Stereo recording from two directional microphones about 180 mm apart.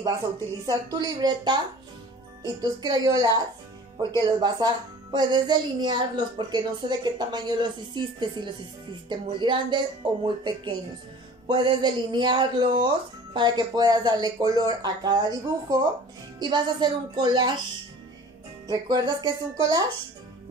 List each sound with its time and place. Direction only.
0.7 s speech: 20° right (ahead or behind)
2.6 s speech: 20° right (ahead or behind)
4.4 s speech: 25° right (ahead or behind)
18.7 s speech: 20° right (ahead or behind)